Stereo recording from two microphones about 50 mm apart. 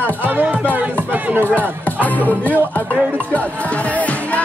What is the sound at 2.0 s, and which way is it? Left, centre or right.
Speech, left.